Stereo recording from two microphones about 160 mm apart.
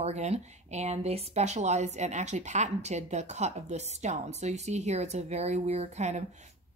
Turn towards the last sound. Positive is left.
turn(degrees=-45)  # may be behind; listen again after turning